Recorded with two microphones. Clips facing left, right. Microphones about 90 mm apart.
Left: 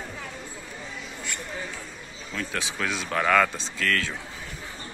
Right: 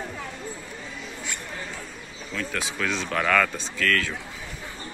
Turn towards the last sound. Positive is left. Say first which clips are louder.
# right 2 dB
turn(degrees=30)  # may be behind; listen again after turning